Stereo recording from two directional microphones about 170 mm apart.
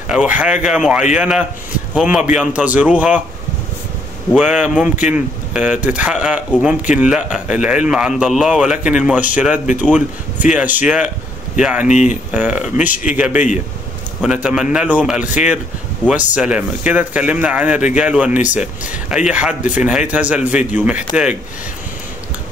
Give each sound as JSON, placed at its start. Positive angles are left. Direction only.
{"t": 0.1, "sound": "a man's voice", "side_deg": -5}
{"t": 4.3, "sound": "a man's voice", "side_deg": -5}
{"t": 11.9, "sound": "speech", "side_deg": 45}
{"t": 12.3, "sound": "speech", "side_deg": -10}
{"t": 14.2, "sound": "a man's voice", "side_deg": -5}